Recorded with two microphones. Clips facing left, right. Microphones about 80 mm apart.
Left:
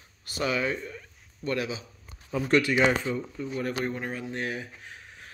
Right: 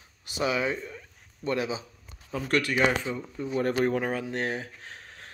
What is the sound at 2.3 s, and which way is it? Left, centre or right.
Speech, centre.